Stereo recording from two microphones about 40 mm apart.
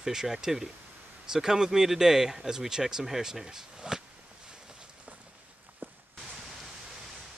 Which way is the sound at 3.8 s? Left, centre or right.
Centre.